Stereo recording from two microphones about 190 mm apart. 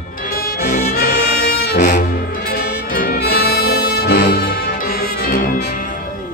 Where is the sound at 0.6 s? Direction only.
55° left (ahead or behind).